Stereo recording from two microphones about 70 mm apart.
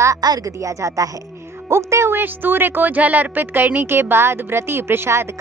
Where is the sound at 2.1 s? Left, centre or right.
Right.